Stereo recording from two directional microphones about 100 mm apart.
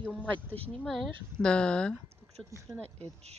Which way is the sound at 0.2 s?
15° left (ahead or behind).